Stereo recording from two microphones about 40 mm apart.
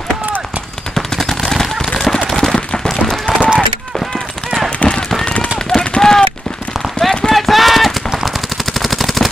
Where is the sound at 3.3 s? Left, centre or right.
Left.